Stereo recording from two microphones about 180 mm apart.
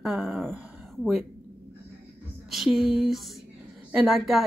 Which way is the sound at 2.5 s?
Centre (ahead or behind).